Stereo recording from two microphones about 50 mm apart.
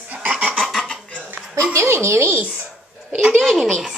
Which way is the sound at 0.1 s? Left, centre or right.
Right.